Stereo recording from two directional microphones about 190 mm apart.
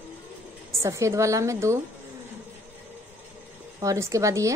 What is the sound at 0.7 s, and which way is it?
A woman's voice, 15° right (ahead or behind).